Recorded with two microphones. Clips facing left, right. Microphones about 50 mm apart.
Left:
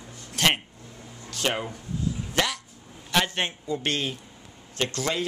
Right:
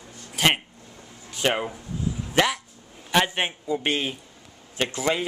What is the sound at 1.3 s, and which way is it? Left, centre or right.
Speech, centre.